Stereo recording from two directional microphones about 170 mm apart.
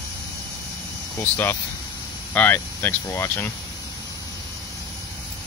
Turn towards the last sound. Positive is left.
turn(degrees=10)  # may be behind; listen again after turning